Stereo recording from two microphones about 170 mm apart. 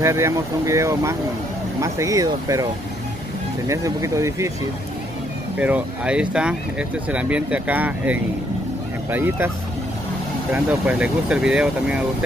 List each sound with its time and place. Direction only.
0.0 s speech: 15° right (ahead or behind)
5.6 s speech: 5° right (ahead or behind)
10.5 s speech: 5° right (ahead or behind)